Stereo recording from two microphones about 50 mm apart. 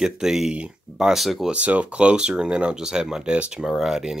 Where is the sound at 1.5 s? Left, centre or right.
Right.